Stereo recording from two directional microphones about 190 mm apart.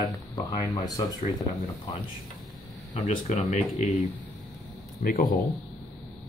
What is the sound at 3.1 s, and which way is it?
Speech, 35° left (ahead or behind).